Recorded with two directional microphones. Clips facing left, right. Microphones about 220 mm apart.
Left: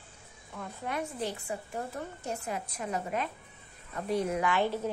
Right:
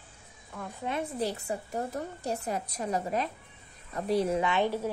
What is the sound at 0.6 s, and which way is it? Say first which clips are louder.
Speech: right 3 dB; 15° right (ahead or behind).